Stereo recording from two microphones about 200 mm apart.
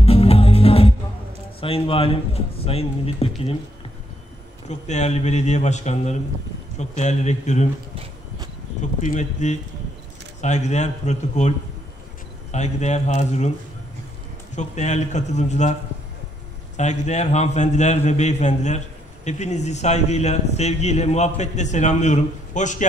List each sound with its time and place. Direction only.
0.0 s music: 30° left (ahead or behind)
1.6 s a man's voice: 30° left (ahead or behind)
4.6 s a man's voice: 35° left (ahead or behind)
9.0 s a man's voice: 40° left (ahead or behind)
14.5 s a man's voice: 35° left (ahead or behind)
16.7 s a man's voice: 35° left (ahead or behind)